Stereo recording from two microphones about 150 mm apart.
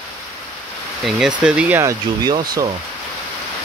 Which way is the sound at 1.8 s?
20° right (ahead or behind).